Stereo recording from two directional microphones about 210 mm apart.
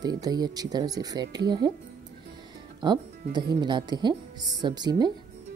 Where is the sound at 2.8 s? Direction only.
20° right (ahead or behind).